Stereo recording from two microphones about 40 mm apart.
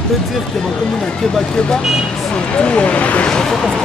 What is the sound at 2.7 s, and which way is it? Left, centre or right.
Speech, left.